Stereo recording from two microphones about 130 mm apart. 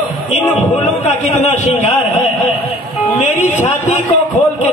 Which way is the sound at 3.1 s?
65° left (ahead or behind).